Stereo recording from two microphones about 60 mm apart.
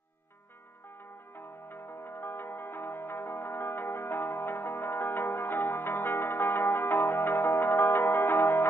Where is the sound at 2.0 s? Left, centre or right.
Left.